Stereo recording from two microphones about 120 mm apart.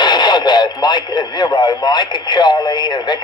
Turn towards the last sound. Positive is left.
turn(degrees=35)  # may be behind; listen again after turning